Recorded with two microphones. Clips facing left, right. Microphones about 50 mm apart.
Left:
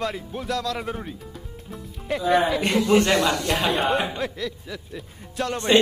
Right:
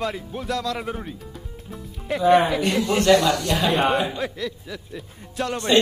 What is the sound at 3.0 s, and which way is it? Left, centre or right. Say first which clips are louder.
Speech: right 4 dB; left.